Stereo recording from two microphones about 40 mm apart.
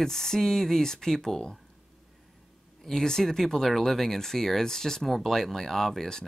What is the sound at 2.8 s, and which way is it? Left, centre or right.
Speech, centre.